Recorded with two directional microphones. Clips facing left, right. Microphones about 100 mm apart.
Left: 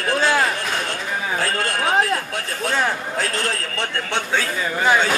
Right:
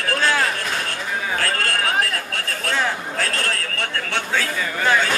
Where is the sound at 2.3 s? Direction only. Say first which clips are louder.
Left 1 dB; 15° left (ahead or behind).